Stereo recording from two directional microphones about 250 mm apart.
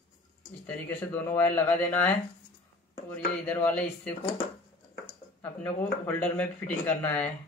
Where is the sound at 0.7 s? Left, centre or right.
Centre.